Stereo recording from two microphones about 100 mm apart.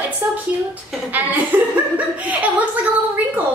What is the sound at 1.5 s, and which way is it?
A woman's voice, 15° right (ahead or behind).